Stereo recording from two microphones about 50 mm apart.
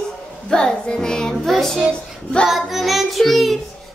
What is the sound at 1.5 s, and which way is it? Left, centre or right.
Child singing, centre.